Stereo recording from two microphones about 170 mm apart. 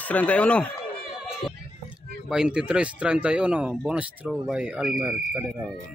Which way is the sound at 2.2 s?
5° right (ahead or behind).